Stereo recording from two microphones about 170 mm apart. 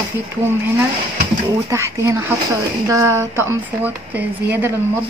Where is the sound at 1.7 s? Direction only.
15° right (ahead or behind).